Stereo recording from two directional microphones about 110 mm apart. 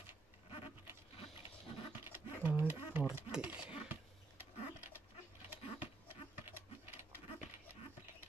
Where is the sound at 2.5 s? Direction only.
15° right (ahead or behind).